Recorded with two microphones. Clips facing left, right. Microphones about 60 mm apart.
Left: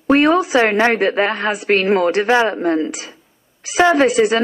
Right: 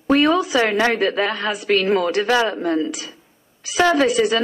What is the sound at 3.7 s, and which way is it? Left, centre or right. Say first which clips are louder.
Speech: left 3 dB; left.